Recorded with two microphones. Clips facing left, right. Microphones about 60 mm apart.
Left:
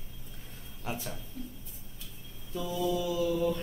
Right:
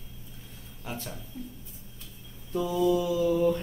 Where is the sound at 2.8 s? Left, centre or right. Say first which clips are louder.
Right 5 dB; right.